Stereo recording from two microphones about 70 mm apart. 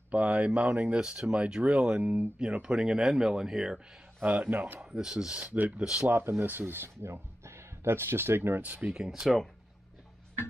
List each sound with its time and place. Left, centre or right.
0.1 s a man's voice: centre
4.2 s a man's voice: right
4.9 s speech: centre
5.4 s speech: right
6.0 s speech: right; by 9.4 s centre